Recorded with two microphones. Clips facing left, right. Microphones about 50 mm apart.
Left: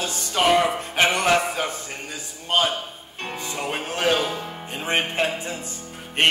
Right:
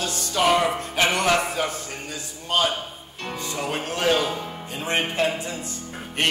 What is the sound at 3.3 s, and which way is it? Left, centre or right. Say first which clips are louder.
Music: right 1 dB; left.